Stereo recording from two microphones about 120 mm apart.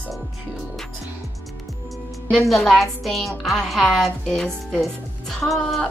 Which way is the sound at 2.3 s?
Centre (ahead or behind).